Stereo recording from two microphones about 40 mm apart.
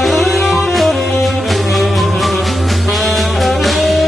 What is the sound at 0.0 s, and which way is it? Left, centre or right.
Music, centre.